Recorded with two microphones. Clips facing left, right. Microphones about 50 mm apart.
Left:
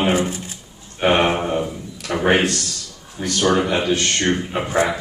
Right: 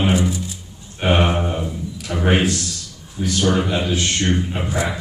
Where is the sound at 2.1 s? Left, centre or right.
Left.